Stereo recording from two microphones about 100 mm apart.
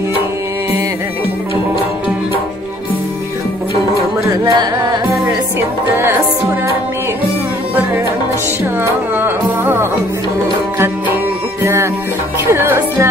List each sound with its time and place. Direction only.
4.2 s music: 35° right (ahead or behind)
9.1 s music: 20° right (ahead or behind)
11.6 s music: 25° right (ahead or behind)